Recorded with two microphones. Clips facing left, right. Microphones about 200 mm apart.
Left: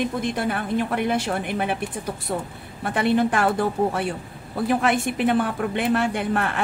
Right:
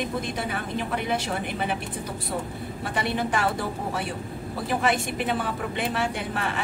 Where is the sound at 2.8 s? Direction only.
55° left (ahead or behind).